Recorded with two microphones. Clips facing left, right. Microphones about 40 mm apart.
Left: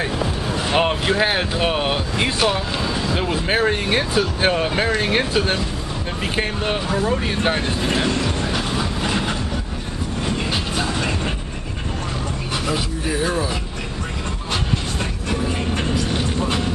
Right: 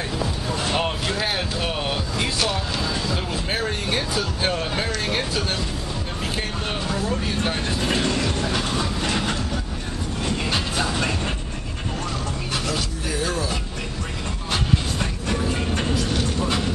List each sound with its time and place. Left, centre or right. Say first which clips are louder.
0.2 s speech: left 3 dB; left
7.9 s train: left 1 dB; centre
12.6 s speech: left 4 dB; centre
15.2 s vehicle: left 2 dB; centre